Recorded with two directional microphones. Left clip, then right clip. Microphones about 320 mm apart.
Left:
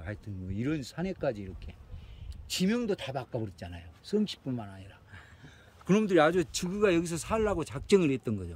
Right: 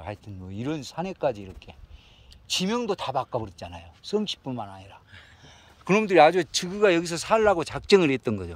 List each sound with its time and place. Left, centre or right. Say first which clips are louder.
0.0 s speech: right 5 dB; centre
2.4 s speech: right 5 dB; centre
3.0 s speech: right 8 dB; right
3.7 s speech: right 5 dB; centre
5.9 s speech: right 7 dB; centre